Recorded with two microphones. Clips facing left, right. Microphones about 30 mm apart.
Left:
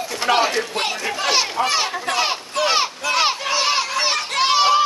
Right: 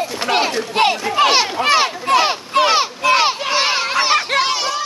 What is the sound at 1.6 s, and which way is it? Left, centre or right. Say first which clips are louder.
Speech: right 6 dB; right.